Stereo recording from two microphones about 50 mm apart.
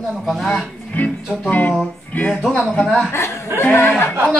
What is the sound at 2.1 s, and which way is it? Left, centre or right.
Speech, left.